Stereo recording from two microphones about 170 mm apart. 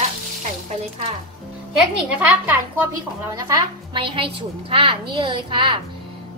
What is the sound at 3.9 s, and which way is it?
A woman's voice, 30° right (ahead or behind).